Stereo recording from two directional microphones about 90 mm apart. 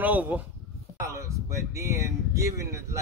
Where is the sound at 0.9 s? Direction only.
35° right (ahead or behind).